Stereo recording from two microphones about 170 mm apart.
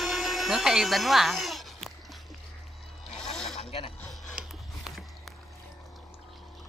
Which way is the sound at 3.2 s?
5° left (ahead or behind).